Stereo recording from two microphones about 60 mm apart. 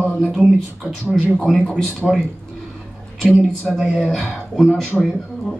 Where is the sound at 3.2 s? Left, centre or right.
Centre.